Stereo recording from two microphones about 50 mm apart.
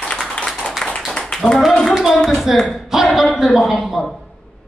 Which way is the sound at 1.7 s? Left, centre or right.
Centre.